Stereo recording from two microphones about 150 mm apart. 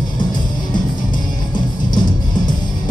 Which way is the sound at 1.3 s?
30° left (ahead or behind).